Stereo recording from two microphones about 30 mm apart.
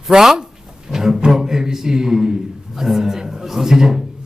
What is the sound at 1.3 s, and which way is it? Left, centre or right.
A man's voice, centre.